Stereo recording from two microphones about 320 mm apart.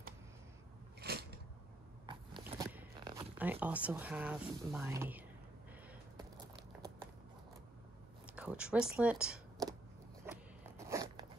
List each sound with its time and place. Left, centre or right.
1.0 s biting: right
2.0 s zipper: centre
6.1 s a sound: centre
8.3 s speech: centre
10.3 s a sound: centre
10.9 s zipper: centre